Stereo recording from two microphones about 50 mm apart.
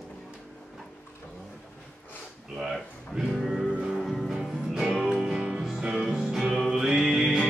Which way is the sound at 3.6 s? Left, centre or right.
Centre.